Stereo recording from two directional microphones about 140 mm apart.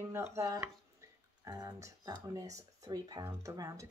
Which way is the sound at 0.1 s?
20° right (ahead or behind).